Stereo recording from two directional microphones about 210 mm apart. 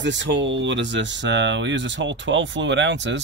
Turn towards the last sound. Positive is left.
turn(degrees=-60)  # may be behind; listen again after turning